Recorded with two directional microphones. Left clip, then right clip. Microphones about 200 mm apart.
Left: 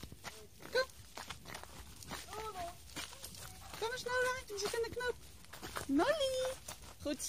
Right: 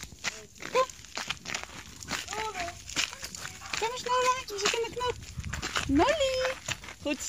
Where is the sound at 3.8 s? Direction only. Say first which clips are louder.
Right 8 dB; 10° left (ahead or behind).